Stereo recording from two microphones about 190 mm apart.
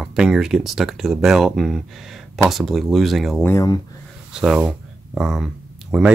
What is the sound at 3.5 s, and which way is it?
Speech, 15° left (ahead or behind).